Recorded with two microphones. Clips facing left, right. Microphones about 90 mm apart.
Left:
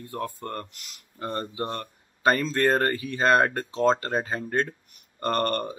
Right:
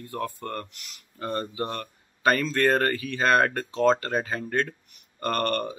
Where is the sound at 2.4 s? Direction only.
30° left (ahead or behind).